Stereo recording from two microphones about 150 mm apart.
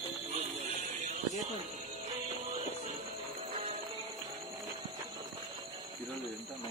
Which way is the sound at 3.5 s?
50° right (ahead or behind).